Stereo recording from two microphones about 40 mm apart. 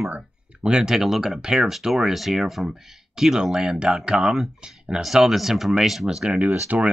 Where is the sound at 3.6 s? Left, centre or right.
Right.